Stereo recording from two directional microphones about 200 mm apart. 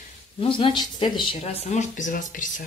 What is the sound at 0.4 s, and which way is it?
Speech, 25° left (ahead or behind).